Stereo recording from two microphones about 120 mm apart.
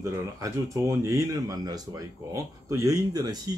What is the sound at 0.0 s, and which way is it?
Speech, 25° right (ahead or behind).